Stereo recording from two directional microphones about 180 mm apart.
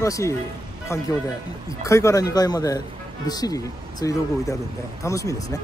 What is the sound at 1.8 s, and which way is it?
A man's voice, 15° left (ahead or behind).